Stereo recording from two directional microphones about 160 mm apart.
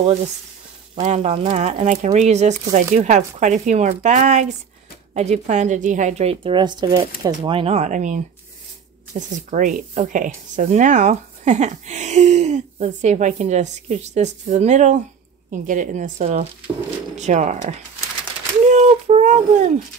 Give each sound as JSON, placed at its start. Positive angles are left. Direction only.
{"t": 0.9, "sound": "speech", "side_deg": -45}
{"t": 9.3, "sound": "speech", "side_deg": -55}
{"t": 18.7, "sound": "a sound", "side_deg": -45}